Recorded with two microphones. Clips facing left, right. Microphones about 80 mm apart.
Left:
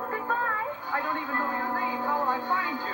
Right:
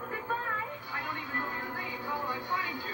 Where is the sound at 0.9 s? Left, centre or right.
Left.